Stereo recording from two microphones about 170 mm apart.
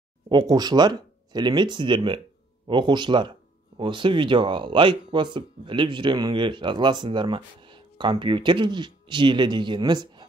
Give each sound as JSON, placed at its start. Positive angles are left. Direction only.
{"t": 0.3, "sound": "speech", "side_deg": -25}